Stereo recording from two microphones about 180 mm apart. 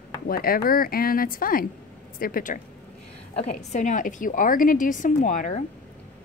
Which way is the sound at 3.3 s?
40° left (ahead or behind).